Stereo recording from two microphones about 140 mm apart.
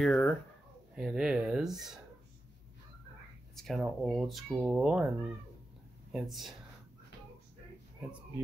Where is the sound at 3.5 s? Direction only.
Centre (ahead or behind).